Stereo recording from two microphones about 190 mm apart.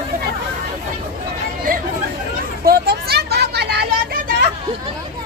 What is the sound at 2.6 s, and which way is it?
Vehicle, 55° right (ahead or behind).